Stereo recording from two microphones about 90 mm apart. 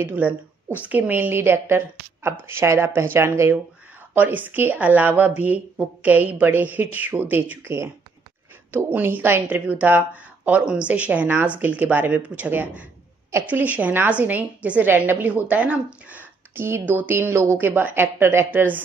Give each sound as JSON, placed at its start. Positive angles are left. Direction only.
{"t": 0.0, "sound": "a woman's voice", "side_deg": -20}
{"t": 4.1, "sound": "a woman's voice", "side_deg": -20}